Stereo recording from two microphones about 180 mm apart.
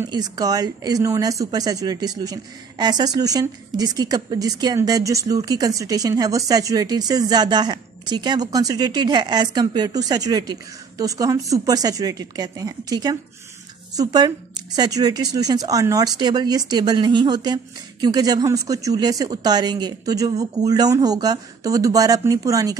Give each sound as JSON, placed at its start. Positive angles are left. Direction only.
{"t": 0.0, "sound": "speech", "side_deg": -20}